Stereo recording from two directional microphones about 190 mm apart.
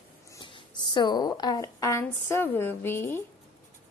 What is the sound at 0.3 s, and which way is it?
A woman's voice, 25° left (ahead or behind).